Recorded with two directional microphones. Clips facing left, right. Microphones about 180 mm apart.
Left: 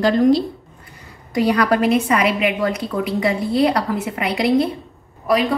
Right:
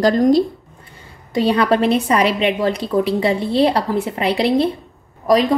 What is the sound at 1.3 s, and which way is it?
A woman's voice, 30° right (ahead or behind).